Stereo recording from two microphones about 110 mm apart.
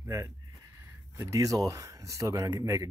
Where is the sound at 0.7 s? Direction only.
25° right (ahead or behind).